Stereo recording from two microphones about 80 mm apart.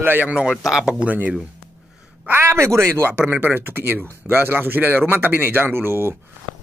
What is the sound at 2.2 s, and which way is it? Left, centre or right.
Speech, right.